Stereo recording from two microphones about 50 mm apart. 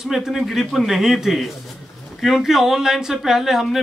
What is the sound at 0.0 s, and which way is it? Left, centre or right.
A man's voice, centre.